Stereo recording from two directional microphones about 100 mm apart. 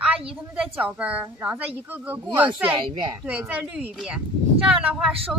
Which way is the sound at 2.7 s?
55° right (ahead or behind).